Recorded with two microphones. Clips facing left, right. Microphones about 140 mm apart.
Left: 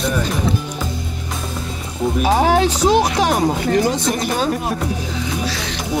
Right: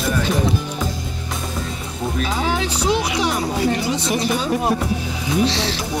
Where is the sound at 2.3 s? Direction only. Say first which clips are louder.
Left 11 dB; 45° left (ahead or behind).